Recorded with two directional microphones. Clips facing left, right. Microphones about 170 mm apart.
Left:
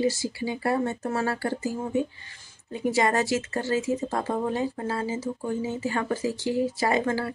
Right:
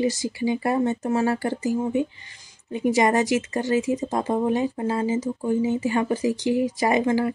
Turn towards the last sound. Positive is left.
turn(degrees=-15)  # may be behind; listen again after turning